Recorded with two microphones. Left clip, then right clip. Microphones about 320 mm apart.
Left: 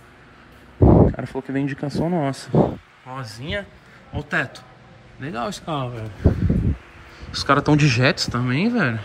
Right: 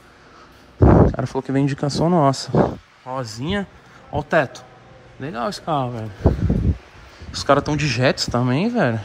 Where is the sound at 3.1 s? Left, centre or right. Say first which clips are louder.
Right 4 dB; centre.